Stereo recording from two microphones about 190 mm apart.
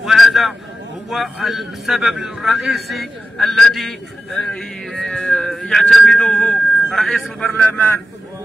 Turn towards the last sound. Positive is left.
turn(degrees=5)  # may be behind; listen again after turning